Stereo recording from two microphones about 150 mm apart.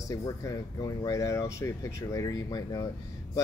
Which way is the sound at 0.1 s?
20° left (ahead or behind).